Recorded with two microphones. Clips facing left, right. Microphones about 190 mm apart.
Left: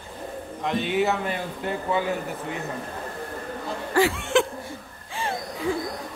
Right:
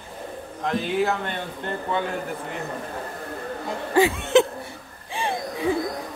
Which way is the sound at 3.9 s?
20° right (ahead or behind).